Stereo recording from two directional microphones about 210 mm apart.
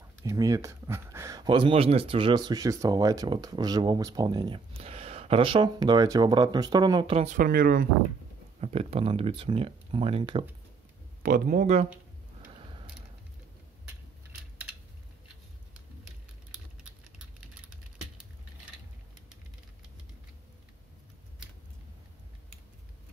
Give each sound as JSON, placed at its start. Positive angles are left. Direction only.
{"t": 0.2, "sound": "speech", "side_deg": -15}
{"t": 7.3, "sound": "speech", "side_deg": -45}
{"t": 8.5, "sound": "speech", "side_deg": -30}
{"t": 11.2, "sound": "speech", "side_deg": -40}
{"t": 12.5, "sound": "mechanisms", "side_deg": -25}